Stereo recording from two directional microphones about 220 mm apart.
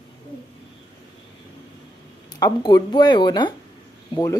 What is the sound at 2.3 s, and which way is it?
Speech, 20° left (ahead or behind).